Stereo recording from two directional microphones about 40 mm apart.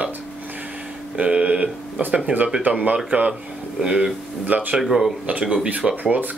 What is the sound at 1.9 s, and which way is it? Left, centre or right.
Speech, right.